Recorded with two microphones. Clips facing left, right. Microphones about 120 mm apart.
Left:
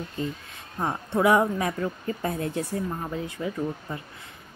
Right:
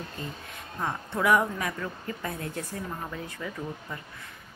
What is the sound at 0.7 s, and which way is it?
Speech, 25° left (ahead or behind).